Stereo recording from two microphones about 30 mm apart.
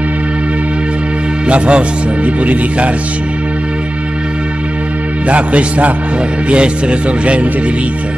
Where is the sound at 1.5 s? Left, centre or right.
Right.